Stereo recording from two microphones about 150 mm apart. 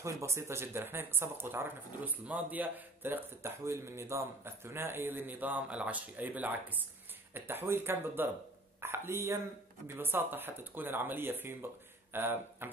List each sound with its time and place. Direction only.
0.0 s speech: 20° right (ahead or behind)